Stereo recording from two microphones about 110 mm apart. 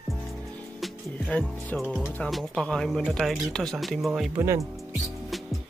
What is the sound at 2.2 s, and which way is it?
Speech, 5° left (ahead or behind).